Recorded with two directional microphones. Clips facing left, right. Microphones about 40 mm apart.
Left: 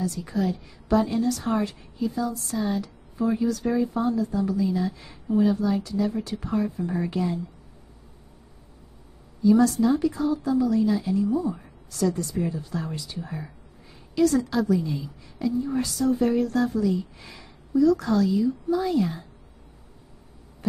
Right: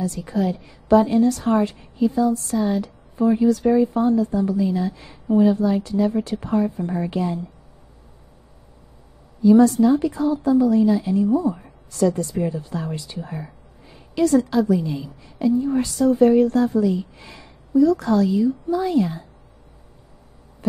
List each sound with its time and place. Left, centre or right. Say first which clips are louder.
0.3 s a woman's voice: right 5 dB; right
2.5 s a woman's voice: right 5 dB; centre
2.8 s a woman's voice: right 6 dB; right
9.4 s a woman's voice: right 5 dB; right